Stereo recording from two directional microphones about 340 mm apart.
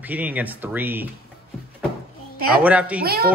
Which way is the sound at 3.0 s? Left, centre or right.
Right.